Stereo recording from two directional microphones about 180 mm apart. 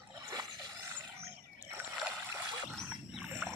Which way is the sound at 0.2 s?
20° right (ahead or behind).